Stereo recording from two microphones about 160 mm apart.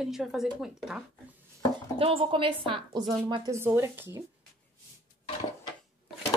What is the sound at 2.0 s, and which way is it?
A woman's voice, 35° right (ahead or behind).